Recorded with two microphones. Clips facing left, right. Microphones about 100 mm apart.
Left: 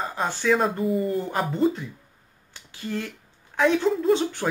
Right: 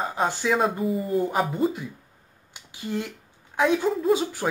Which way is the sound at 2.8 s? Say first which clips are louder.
Right 1 dB; 15° right (ahead or behind).